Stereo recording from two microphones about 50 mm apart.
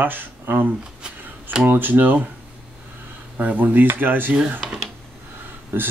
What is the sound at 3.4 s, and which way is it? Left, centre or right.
Speech, right.